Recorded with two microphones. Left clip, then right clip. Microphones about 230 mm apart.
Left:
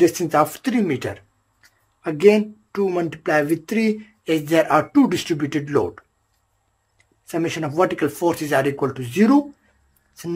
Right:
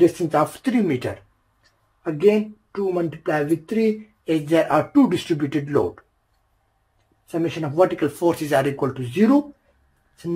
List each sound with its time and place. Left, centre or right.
0.0 s speech: centre
2.0 s speech: left; by 5.9 s centre
7.2 s speech: left